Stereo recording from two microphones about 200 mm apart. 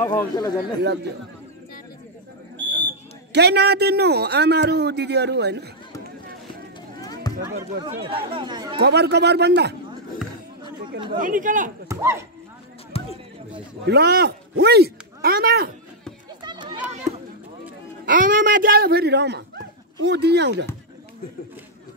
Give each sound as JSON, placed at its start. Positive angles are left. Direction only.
{"t": 0.0, "sound": "speech", "side_deg": 20}
{"t": 2.5, "sound": "a sound", "side_deg": 10}
{"t": 3.3, "sound": "a man's voice", "side_deg": -55}
{"t": 7.0, "sound": "a sound", "side_deg": 20}
{"t": 8.1, "sound": "speech", "side_deg": -25}
{"t": 8.8, "sound": "a man's voice", "side_deg": -55}
{"t": 11.1, "sound": "speech", "side_deg": -40}
{"t": 11.9, "sound": "speech", "side_deg": -15}
{"t": 12.9, "sound": "a sound", "side_deg": 30}
{"t": 13.8, "sound": "a man's voice", "side_deg": -55}
{"t": 16.4, "sound": "run", "side_deg": -20}
{"t": 18.0, "sound": "speech", "side_deg": -40}